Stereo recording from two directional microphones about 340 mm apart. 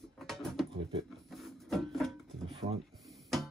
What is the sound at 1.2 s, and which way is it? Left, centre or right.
Music, centre.